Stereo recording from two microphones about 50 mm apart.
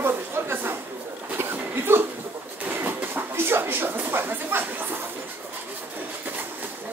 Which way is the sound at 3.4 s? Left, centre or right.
Right.